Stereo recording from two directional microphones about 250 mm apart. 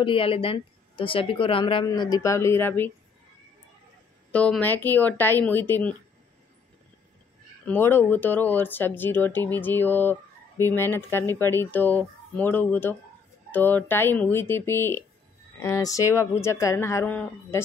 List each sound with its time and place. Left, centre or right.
0.0 s speech: left
4.3 s speech: centre
7.6 s speech: centre